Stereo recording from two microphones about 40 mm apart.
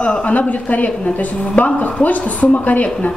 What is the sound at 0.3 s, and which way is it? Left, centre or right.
A woman's voice, left.